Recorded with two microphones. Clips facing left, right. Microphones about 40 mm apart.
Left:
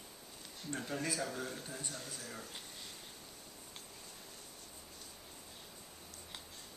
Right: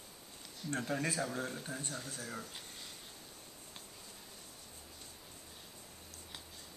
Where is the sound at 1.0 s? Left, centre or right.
Right.